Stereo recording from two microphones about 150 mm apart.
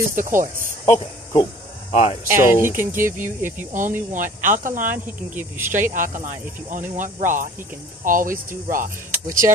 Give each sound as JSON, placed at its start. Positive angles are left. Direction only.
{"t": 0.1, "sound": "speech", "side_deg": -60}
{"t": 0.8, "sound": "speech", "side_deg": 20}
{"t": 1.9, "sound": "speech", "side_deg": 40}
{"t": 2.2, "sound": "speech", "side_deg": -15}
{"t": 4.1, "sound": "speech", "side_deg": -60}
{"t": 4.8, "sound": "speech", "side_deg": -10}
{"t": 5.9, "sound": "speech", "side_deg": -60}